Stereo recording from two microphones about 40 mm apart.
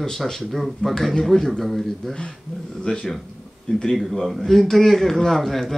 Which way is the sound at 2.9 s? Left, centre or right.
Left.